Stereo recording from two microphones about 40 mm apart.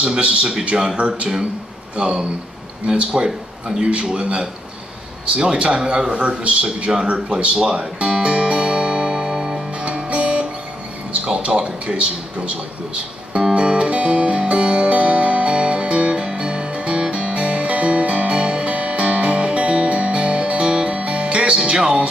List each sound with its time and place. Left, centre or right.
0.0 s a man's voice: right
7.1 s music: right
9.3 s music: centre
9.8 s music: right
11.1 s speech: right
13.6 s music: right